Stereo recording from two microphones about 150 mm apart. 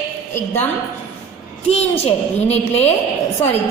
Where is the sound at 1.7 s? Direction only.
45° left (ahead or behind).